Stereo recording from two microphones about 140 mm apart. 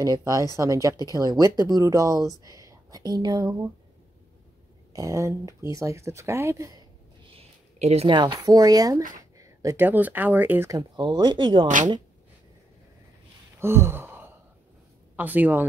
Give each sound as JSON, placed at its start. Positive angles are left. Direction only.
{"t": 0.0, "sound": "speech", "side_deg": -25}
{"t": 4.9, "sound": "speech", "side_deg": -20}
{"t": 7.3, "sound": "a sound", "side_deg": -50}
{"t": 8.1, "sound": "speech", "side_deg": -30}
{"t": 10.7, "sound": "speech", "side_deg": -30}
{"t": 11.6, "sound": "speech", "side_deg": -65}
{"t": 13.6, "sound": "gasp", "side_deg": -15}
{"t": 15.1, "sound": "speech", "side_deg": -15}